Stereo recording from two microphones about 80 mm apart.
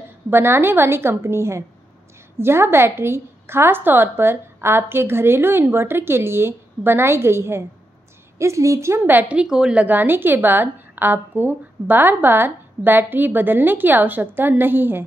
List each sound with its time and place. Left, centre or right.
0.3 s a woman's voice: right
9.0 s a woman's voice: right
9.4 s a woman's voice: centre; by 15.0 s right